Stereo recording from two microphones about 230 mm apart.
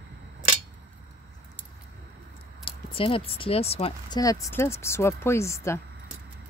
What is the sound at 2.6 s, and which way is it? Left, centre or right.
Speech, left.